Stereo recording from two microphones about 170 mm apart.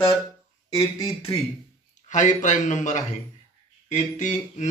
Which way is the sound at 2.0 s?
45° left (ahead or behind).